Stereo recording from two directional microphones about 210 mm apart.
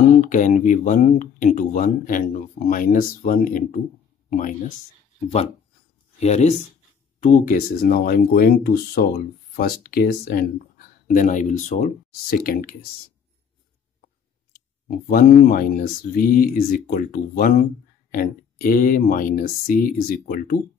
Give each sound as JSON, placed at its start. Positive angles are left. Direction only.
{"t": 0.2, "sound": "speech", "side_deg": 35}
{"t": 6.1, "sound": "speech", "side_deg": 30}
{"t": 15.0, "sound": "speech", "side_deg": 40}